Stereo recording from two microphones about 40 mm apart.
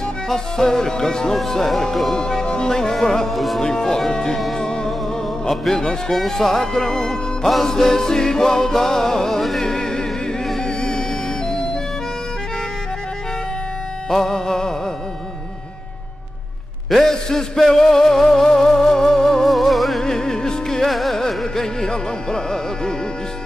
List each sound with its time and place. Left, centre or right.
0.3 s music: centre
2.1 s music: centre
3.6 s music: centre
14.1 s music: centre
16.9 s a sound: centre
20.0 s music: centre
20.9 s music: centre